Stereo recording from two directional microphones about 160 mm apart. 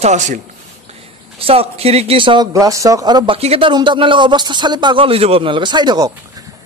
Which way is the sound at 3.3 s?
40° right (ahead or behind).